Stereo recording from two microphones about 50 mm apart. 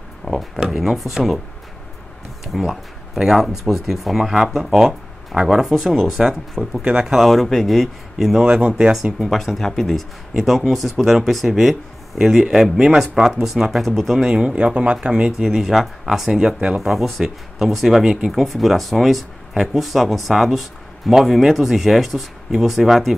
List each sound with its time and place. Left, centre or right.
0.2 s a sound: centre
0.7 s speech: centre
2.4 s speech: centre
6.8 s speech: centre
7.2 s speech: centre
8.5 s speech: centre
9.2 s speech: centre
14.2 s speech: centre
15.4 s speech: centre
16.3 s speech: centre
18.3 s speech: centre